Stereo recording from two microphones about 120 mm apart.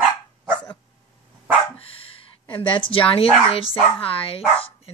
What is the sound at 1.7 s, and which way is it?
Dog, 50° left (ahead or behind).